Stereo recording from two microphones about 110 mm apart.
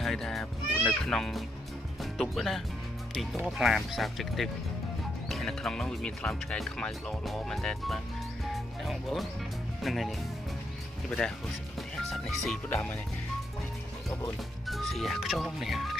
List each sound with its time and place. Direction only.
0.0 s music: centre (ahead or behind)
0.8 s speech: centre (ahead or behind)
12.1 s music: centre (ahead or behind)
12.6 s speech: 10° left (ahead or behind)
14.7 s speech: centre (ahead or behind)